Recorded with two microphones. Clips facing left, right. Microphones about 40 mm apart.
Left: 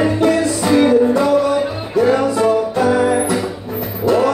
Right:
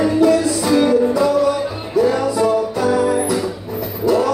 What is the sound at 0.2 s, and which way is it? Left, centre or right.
Music, left.